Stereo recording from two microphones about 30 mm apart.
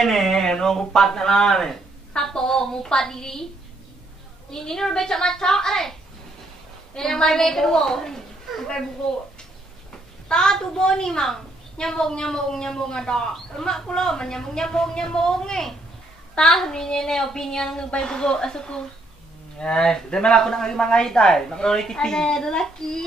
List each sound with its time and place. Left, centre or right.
0.0 s speech: centre
4.5 s a woman's voice: centre
7.0 s a woman's voice: centre
10.2 s a child's voice: left